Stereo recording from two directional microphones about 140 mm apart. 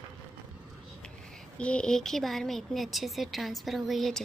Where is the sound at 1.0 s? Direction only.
5° left (ahead or behind).